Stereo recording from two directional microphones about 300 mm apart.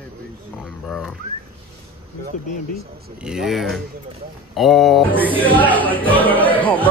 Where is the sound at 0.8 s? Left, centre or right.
Centre.